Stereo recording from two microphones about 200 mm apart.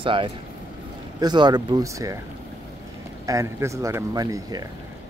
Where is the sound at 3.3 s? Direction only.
15° right (ahead or behind).